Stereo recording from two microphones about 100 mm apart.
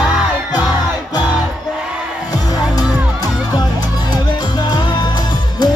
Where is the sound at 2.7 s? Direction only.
40° left (ahead or behind).